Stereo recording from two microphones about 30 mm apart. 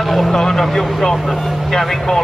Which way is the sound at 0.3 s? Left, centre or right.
Left.